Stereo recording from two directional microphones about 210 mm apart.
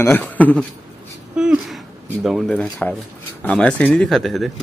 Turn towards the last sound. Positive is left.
turn(degrees=0)  # may be behind; listen again after turning